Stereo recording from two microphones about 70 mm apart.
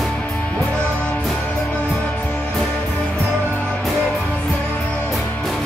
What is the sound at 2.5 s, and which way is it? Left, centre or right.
Music, centre.